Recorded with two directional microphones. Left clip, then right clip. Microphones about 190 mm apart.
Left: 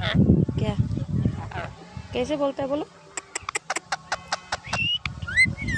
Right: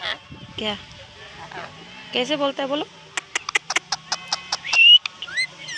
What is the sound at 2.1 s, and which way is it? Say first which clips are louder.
Speech: right 3 dB; centre (ahead or behind).